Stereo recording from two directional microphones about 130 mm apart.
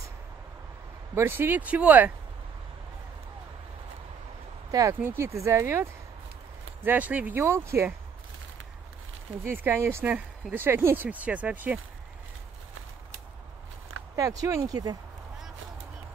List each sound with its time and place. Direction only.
1.1 s speech: 15° right (ahead or behind)
4.6 s speech: 25° right (ahead or behind)
9.4 s speech: 15° right (ahead or behind)
14.1 s speech: 25° right (ahead or behind)